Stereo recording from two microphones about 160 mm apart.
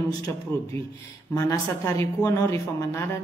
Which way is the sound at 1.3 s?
20° left (ahead or behind).